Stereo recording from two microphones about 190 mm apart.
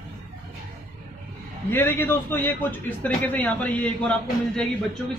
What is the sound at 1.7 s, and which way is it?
A man's voice, 10° left (ahead or behind).